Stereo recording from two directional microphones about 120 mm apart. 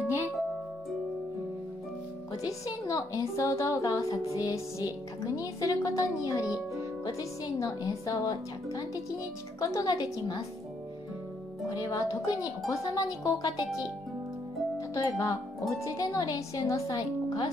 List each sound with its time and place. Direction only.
2.4 s a woman's voice: 30° left (ahead or behind)
11.6 s speech: 30° left (ahead or behind)
15.0 s speech: 30° left (ahead or behind)